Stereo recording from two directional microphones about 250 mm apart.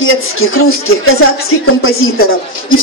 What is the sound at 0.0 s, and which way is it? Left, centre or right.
Speech, left.